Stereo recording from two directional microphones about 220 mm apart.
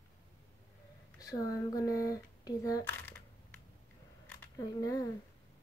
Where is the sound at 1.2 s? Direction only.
15° left (ahead or behind).